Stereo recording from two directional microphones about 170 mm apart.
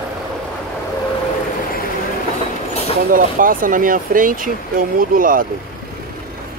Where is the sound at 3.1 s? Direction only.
55° right (ahead or behind).